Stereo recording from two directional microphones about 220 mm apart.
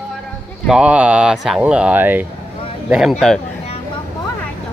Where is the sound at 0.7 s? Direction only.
5° right (ahead or behind).